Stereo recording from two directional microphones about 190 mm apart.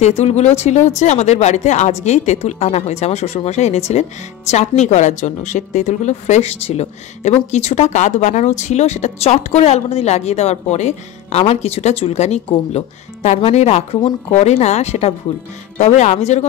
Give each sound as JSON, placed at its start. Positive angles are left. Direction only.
{"t": 0.0, "sound": "a woman's voice", "side_deg": 35}